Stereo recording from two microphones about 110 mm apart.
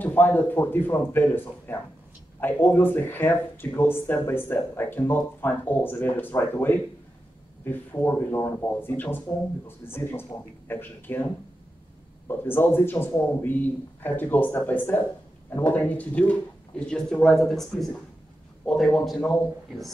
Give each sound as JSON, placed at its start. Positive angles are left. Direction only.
{"t": 0.0, "sound": "a man's voice", "side_deg": 20}
{"t": 12.3, "sound": "a man's voice", "side_deg": 20}